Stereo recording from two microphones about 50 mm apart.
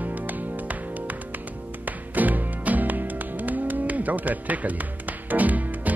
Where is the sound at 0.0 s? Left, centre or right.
Right.